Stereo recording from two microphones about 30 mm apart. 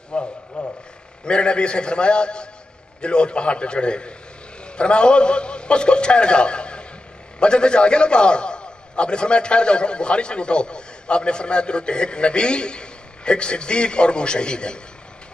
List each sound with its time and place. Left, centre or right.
0.1 s a man's voice: left